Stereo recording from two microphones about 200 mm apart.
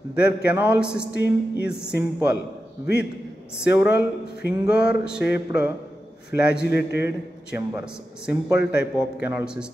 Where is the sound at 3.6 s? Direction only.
5° right (ahead or behind).